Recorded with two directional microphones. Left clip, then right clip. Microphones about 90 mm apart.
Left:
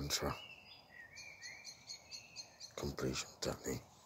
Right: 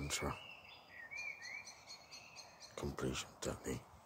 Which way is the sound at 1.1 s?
10° right (ahead or behind).